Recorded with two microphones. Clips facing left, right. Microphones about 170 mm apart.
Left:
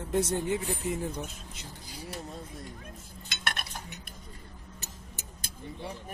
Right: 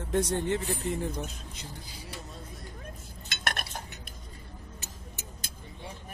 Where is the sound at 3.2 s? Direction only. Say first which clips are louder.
Right 2 dB; 45° right (ahead or behind).